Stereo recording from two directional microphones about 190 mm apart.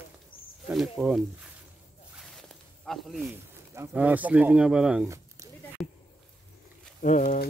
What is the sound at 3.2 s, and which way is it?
Speech, 15° right (ahead or behind).